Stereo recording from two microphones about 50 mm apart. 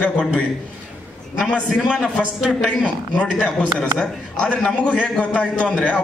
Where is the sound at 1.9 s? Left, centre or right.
Centre.